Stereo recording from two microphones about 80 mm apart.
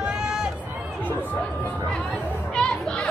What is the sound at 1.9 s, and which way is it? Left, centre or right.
Chatter, centre.